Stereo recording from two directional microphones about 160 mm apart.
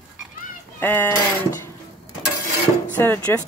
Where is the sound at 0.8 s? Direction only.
15° left (ahead or behind).